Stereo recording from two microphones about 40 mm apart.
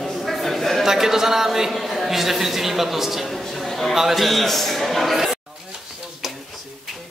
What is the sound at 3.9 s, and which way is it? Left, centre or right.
A man's voice, centre.